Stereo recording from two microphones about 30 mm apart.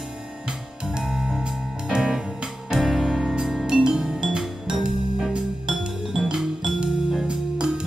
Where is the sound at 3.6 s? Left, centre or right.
Centre.